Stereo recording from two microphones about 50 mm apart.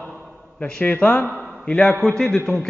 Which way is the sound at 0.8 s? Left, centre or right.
Left.